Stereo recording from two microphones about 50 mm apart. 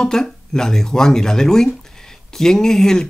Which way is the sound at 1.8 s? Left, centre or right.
Centre.